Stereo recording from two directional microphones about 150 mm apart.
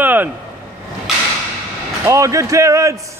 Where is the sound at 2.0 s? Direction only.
20° right (ahead or behind).